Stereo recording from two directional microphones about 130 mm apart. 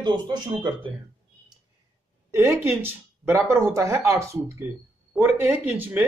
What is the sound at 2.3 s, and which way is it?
Speech, 20° right (ahead or behind).